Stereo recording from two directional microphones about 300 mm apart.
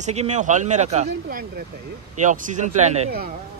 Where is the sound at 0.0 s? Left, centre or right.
Right.